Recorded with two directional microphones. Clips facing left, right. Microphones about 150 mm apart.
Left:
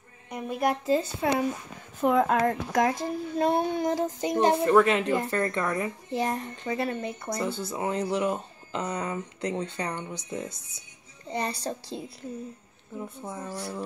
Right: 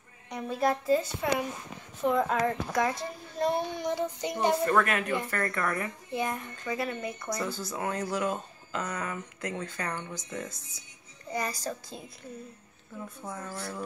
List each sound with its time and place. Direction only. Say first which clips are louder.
0.3 s a woman's voice: left 1 dB; 15° left (ahead or behind)
2.0 s a child's voice: left 4 dB; 55° left (ahead or behind)
4.6 s speech: left 6 dB; 20° left (ahead or behind)
6.1 s a woman's voice: left 3 dB; 35° left (ahead or behind)
13.0 s speech: left 2 dB; 20° left (ahead or behind)